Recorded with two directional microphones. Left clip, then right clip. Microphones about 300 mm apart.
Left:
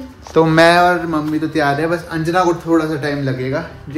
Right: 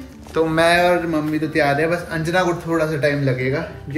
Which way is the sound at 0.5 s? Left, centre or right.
Left.